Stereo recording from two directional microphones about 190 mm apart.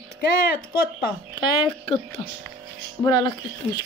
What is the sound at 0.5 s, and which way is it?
Speech, 55° left (ahead or behind).